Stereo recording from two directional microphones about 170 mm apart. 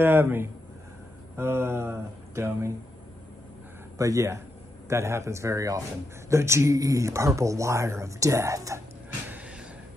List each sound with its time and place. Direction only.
0.0 s speech: 10° right (ahead or behind)
4.0 s speech: 20° right (ahead or behind)